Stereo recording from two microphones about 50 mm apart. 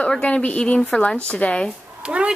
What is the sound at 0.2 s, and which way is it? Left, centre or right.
A woman's voice, left.